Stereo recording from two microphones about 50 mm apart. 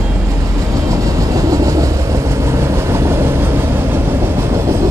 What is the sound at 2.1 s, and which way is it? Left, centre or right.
Vehicle, right.